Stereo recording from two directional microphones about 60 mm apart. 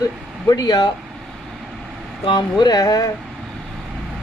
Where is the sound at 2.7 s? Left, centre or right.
Left.